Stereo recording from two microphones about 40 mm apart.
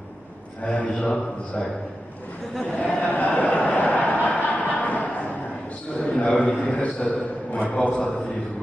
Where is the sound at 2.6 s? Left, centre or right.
Left.